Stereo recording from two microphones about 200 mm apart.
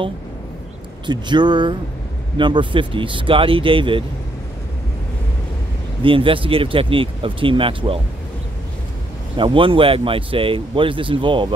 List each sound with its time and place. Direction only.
1.0 s speech: 20° right (ahead or behind)
6.0 s speech: 25° right (ahead or behind)
9.4 s speech: 25° right (ahead or behind)